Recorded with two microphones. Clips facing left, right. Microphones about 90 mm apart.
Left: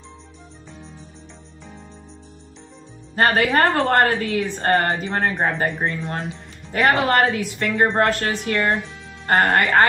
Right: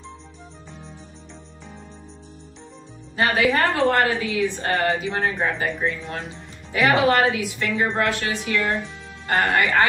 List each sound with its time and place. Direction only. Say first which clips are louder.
3.2 s a woman's voice: left 2 dB; 50° left (ahead or behind)